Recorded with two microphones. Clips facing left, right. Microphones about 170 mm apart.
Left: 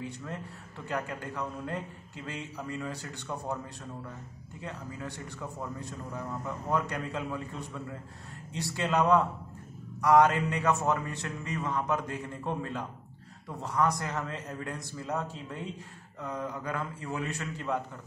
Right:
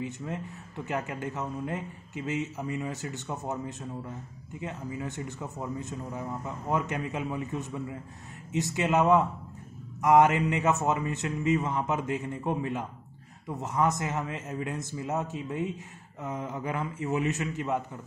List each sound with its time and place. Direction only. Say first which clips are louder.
0.0 s a man's voice: right 4 dB; 15° right (ahead or behind)